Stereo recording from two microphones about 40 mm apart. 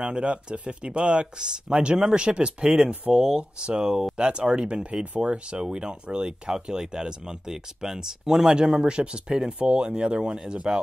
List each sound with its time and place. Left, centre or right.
0.0 s speech: right